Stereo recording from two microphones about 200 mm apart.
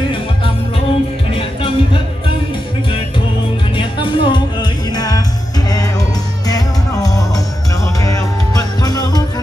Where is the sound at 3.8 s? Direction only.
25° left (ahead or behind).